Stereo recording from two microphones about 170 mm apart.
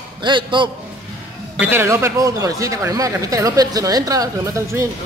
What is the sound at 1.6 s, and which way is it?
Speech, 15° right (ahead or behind).